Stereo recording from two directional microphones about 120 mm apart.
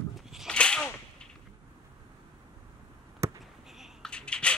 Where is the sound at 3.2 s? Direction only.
25° right (ahead or behind).